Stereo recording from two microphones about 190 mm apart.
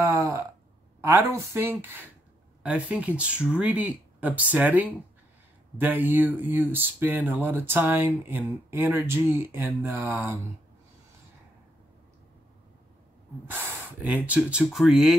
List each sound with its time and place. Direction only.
0.0 s a sound: 15° right (ahead or behind)
1.0 s speech: 15° right (ahead or behind)
13.5 s speech: 10° right (ahead or behind)